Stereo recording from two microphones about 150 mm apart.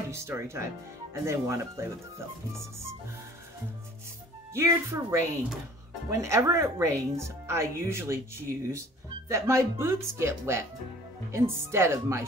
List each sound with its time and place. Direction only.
0.1 s speech: 15° right (ahead or behind)
4.6 s speech: 20° right (ahead or behind)